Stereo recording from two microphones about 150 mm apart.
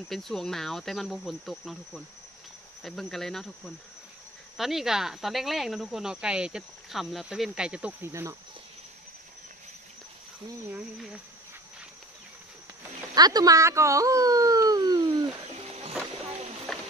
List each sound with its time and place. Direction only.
0.1 s speech: centre (ahead or behind)
8.1 s speech: 20° right (ahead or behind)
13.1 s speech: 25° right (ahead or behind)
16.7 s a sound: 5° left (ahead or behind)